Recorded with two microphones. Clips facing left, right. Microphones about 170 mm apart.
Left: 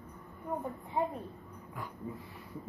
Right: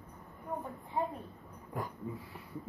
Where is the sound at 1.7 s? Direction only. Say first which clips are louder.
Right 5 dB; 45° right (ahead or behind).